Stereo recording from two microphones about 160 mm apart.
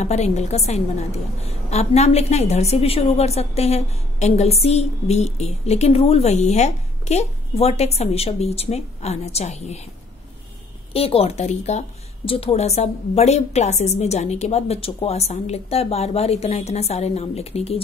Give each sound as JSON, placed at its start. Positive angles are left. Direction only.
{"t": 0.0, "sound": "a woman's voice", "side_deg": 45}
{"t": 10.9, "sound": "a woman's voice", "side_deg": 35}